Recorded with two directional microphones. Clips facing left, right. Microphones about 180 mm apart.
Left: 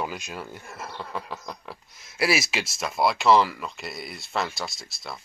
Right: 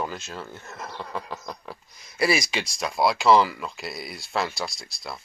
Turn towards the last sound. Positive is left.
turn(degrees=0)  # may be behind; listen again after turning